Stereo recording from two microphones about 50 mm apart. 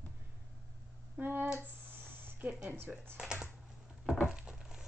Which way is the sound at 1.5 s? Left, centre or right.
Right.